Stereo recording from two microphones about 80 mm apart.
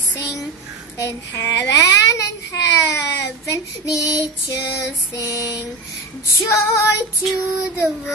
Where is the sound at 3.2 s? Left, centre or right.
Left.